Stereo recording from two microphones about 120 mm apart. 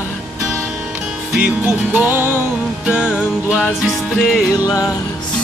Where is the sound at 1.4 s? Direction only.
15° right (ahead or behind); by 4.4 s centre (ahead or behind).